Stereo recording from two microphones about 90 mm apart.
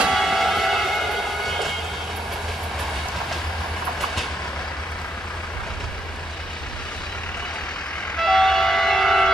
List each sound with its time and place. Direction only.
0.0 s train: centre (ahead or behind)
8.2 s train: 5° left (ahead or behind)